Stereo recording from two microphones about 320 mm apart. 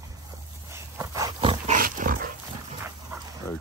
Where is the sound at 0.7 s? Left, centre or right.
Centre; by 2.3 s right.